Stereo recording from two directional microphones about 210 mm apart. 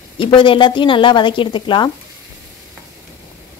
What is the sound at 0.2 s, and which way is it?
A woman's voice, 25° left (ahead or behind).